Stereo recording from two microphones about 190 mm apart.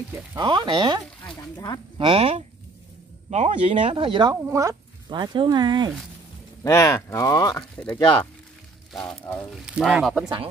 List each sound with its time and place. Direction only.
0.3 s speech: 25° right (ahead or behind)
1.4 s speech: 20° left (ahead or behind)
2.0 s speech: 30° right (ahead or behind)
6.6 s speech: 15° left (ahead or behind)
7.7 s speech: 10° left (ahead or behind)